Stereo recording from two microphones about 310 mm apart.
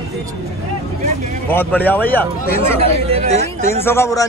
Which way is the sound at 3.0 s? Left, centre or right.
Centre.